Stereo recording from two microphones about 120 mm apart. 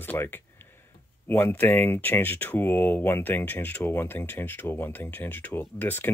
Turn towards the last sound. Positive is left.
turn(degrees=15)  # may be behind; listen again after turning